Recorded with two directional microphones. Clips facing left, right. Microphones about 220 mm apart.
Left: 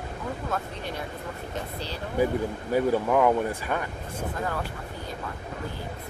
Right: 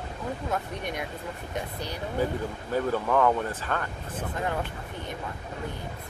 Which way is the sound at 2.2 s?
10° left (ahead or behind).